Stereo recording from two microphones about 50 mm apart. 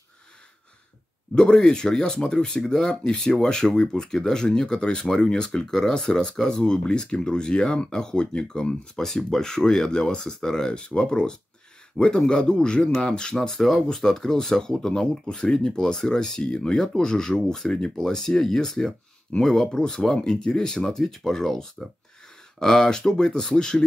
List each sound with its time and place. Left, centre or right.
1.3 s speech: centre